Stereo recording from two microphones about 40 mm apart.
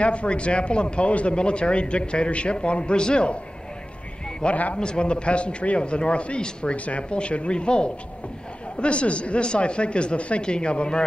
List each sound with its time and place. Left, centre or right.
0.0 s speech: left
4.4 s speech: left